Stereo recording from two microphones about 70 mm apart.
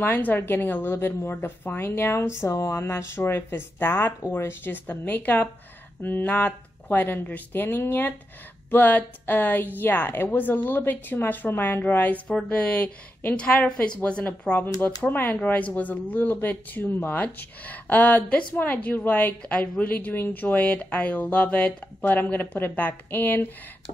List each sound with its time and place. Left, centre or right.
0.0 s speech: left
2.4 s speech: left